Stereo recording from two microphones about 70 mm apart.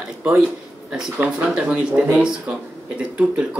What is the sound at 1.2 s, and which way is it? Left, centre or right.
Speech, centre.